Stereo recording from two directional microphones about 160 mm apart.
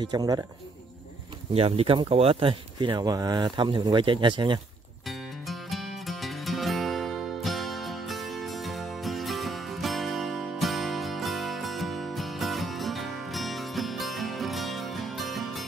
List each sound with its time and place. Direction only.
0.0 s speech: 25° right (ahead or behind)
1.5 s speech: 40° right (ahead or behind)
5.0 s music: centre (ahead or behind)